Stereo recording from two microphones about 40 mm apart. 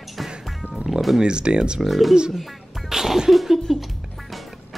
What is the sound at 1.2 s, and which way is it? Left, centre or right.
Speech, right.